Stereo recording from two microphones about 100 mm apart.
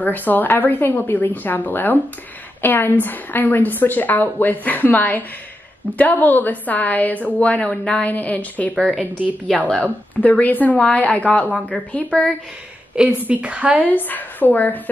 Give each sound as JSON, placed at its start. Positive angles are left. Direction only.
{"t": 0.0, "sound": "a woman's voice", "side_deg": 20}
{"t": 12.9, "sound": "a woman's voice", "side_deg": -10}
{"t": 13.9, "sound": "a woman's voice", "side_deg": 20}